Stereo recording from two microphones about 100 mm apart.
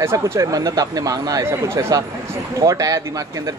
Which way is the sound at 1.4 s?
25° right (ahead or behind).